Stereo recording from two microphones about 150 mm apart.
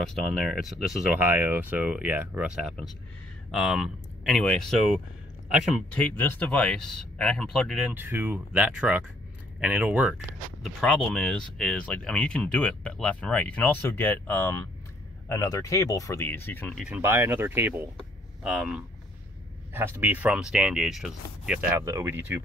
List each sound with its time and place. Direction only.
0.1 s speech: centre (ahead or behind)
7.9 s speech: 15° right (ahead or behind); by 16.7 s 15° left (ahead or behind)
16.7 s speech: 5° right (ahead or behind)
21.7 s speech: 20° right (ahead or behind)